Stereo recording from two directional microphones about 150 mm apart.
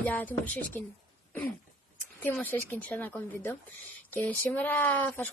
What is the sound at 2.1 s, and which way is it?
A woman's voice, 10° left (ahead or behind).